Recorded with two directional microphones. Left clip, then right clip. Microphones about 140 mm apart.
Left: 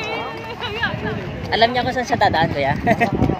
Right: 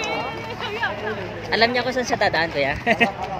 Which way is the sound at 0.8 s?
45° left (ahead or behind).